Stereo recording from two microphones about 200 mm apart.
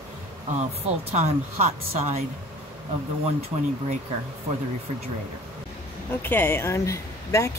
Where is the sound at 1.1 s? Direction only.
35° right (ahead or behind).